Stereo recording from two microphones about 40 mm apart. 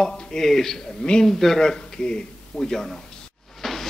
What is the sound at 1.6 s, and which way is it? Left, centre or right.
Speech, centre.